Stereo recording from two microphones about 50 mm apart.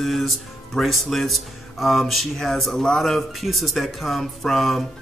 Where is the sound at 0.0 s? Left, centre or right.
Centre.